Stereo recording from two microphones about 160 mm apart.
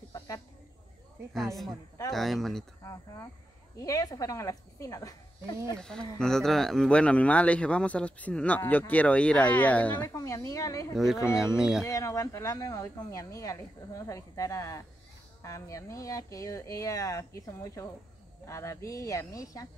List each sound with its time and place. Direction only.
1.3 s a woman's voice: centre (ahead or behind)
2.8 s speech: 20° left (ahead or behind)
5.8 s speech: 5° left (ahead or behind); by 11.0 s 20° left (ahead or behind)
11.5 s a woman's voice: 5° right (ahead or behind)
11.8 s speech: 20° left (ahead or behind)